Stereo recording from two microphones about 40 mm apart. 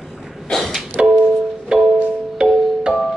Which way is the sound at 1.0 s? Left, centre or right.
Right.